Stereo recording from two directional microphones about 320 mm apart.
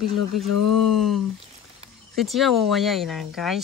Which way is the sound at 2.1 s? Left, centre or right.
Centre.